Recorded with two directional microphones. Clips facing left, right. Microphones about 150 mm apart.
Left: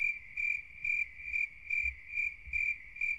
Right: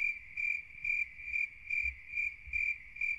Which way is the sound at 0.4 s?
25° left (ahead or behind).